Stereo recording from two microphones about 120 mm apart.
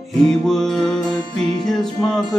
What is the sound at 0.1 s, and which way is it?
Music, centre (ahead or behind).